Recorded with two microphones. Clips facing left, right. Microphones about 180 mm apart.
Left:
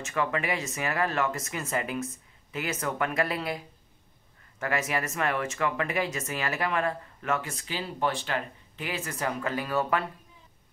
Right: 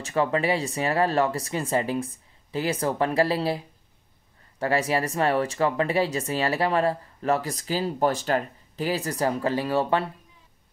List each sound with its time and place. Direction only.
0.0 s speech: 30° right (ahead or behind)